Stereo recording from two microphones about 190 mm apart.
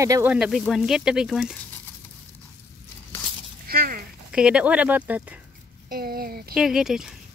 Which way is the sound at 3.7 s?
55° right (ahead or behind).